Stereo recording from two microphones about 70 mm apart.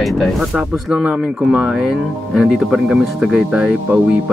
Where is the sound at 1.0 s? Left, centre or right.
Centre.